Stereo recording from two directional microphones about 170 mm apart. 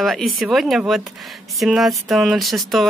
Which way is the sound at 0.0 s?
Centre (ahead or behind).